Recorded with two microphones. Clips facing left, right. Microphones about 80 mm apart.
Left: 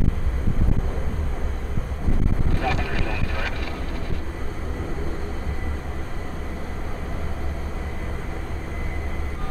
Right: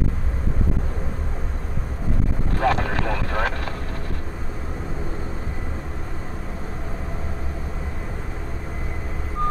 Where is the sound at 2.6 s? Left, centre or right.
Right.